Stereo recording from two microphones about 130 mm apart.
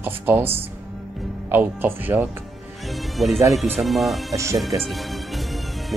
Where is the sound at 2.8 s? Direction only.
Centre (ahead or behind).